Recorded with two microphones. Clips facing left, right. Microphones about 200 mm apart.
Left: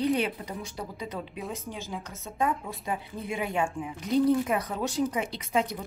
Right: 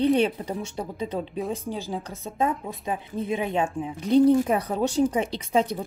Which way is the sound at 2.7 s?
20° right (ahead or behind).